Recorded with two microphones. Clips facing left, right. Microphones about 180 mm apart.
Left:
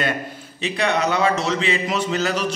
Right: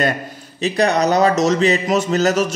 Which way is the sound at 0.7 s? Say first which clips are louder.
Right 5 dB; 40° right (ahead or behind).